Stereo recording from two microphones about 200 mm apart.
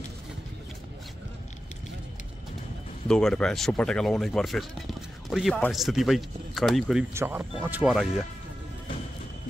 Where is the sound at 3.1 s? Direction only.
5° left (ahead or behind).